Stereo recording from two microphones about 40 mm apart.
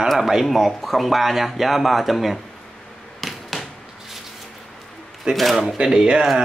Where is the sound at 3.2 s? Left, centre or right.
Centre.